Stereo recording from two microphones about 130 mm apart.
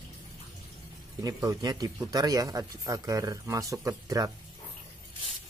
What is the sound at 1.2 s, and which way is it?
Speech, 30° right (ahead or behind).